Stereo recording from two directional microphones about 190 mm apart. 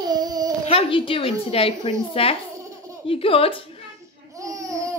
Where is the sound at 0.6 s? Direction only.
30° left (ahead or behind).